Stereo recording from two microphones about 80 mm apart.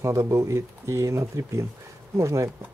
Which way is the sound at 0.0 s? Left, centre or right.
Right.